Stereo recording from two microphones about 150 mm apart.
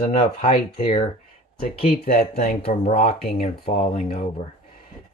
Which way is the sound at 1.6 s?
75° left (ahead or behind).